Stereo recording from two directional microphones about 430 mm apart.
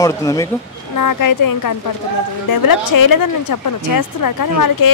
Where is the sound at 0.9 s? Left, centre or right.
Left.